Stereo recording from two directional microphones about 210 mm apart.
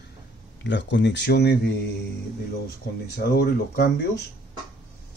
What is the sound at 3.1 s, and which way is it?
Speech, 50° left (ahead or behind).